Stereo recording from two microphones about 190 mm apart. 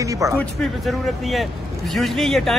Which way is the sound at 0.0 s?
15° right (ahead or behind).